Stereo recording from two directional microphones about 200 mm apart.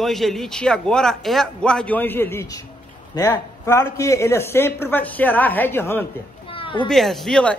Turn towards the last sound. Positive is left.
turn(degrees=5)  # may be behind; listen again after turning